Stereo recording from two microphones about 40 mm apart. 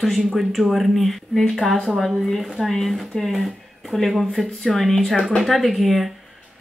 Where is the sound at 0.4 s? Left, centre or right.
Centre.